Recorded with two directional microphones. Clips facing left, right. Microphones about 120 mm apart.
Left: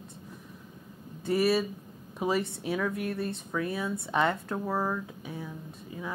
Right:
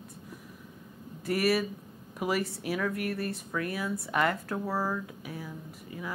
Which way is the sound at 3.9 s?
25° left (ahead or behind).